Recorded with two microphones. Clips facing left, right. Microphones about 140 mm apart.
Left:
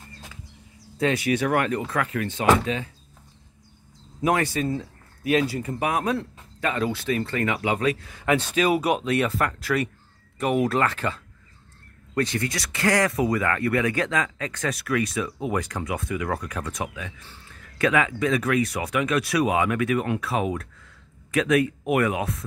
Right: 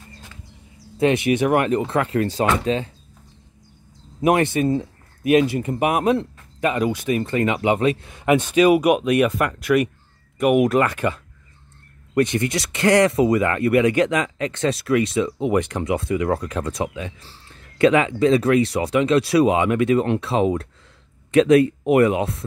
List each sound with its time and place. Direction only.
0.9 s speech: 20° right (ahead or behind)
4.2 s speech: 20° right (ahead or behind)